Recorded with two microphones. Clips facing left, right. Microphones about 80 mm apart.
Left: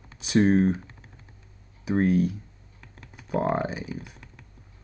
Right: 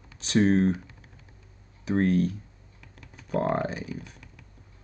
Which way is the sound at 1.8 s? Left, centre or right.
Centre.